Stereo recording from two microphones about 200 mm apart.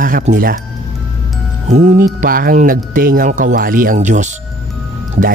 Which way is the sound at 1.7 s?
35° right (ahead or behind).